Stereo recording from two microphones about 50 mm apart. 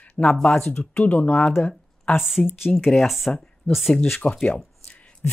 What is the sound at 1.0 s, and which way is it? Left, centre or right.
Speech, left.